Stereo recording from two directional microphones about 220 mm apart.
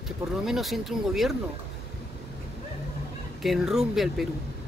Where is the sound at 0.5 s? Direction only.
Centre (ahead or behind).